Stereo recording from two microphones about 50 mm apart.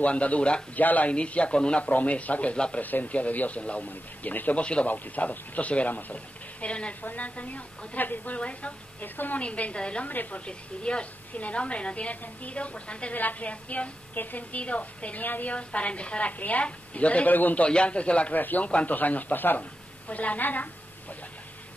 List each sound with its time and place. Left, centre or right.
0.0 s a woman's voice: left
0.7 s a woman's voice: left
2.8 s a woman's voice: left
4.8 s a woman's voice: left
8.4 s a woman's voice: left
9.0 s speech: left
9.4 s a woman's voice: left
10.0 s speech: left
10.4 s a woman's voice: left
13.1 s a woman's voice: left
17.6 s a woman's voice: left
18.4 s speech: left
18.7 s a woman's voice: left